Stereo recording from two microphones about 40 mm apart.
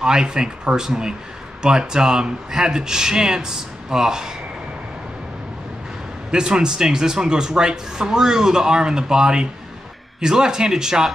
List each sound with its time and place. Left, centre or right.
0.0 s speech: centre
6.3 s speech: centre